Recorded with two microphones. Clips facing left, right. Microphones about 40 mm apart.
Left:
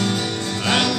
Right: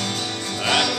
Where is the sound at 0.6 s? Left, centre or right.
Centre.